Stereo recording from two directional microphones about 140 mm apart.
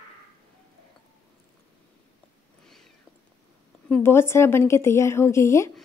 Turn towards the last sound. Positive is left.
turn(degrees=20)  # may be behind; listen again after turning